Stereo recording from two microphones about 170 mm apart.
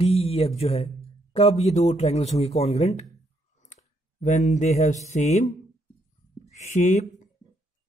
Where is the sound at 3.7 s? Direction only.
45° left (ahead or behind).